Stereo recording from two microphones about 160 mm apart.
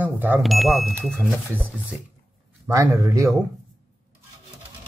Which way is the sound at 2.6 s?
20° right (ahead or behind).